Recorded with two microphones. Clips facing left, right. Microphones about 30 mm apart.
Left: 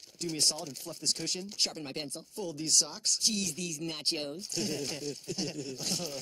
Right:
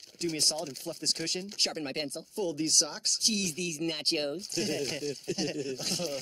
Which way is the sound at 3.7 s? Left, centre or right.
Right.